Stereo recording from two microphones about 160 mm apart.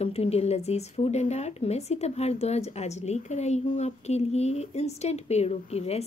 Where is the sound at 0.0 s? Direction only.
40° left (ahead or behind).